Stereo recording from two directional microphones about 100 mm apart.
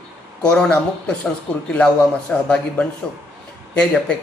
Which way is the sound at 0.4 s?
10° left (ahead or behind).